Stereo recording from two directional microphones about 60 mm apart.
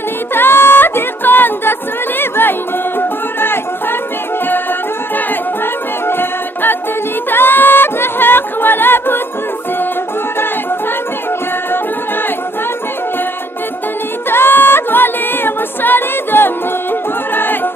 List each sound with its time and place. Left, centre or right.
0.3 s music: left
6.0 s music: left
14.3 s music: left
17.3 s a sound: left